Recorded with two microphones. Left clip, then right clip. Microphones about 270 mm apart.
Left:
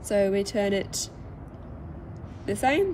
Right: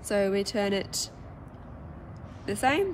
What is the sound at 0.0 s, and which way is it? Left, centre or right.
Speech, centre.